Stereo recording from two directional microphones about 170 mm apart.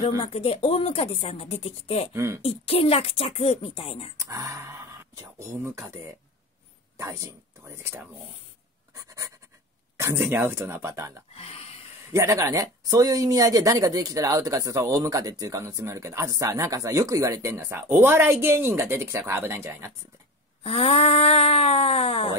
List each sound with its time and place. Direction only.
0.2 s speech: 35° left (ahead or behind)
2.1 s speech: 15° right (ahead or behind)
2.4 s speech: 35° left (ahead or behind)
4.2 s speech: 20° right (ahead or behind)
7.0 s speech: 15° right (ahead or behind)
8.9 s writing: 20° right (ahead or behind)
9.9 s speech: 15° right (ahead or behind)
11.3 s a sound: 35° left (ahead or behind)
12.1 s speech: 15° right (ahead or behind)
20.6 s speech: 35° left (ahead or behind)